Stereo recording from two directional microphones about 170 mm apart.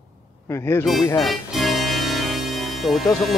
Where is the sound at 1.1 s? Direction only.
Centre (ahead or behind).